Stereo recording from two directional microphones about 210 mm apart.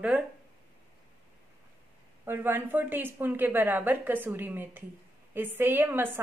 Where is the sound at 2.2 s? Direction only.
10° right (ahead or behind).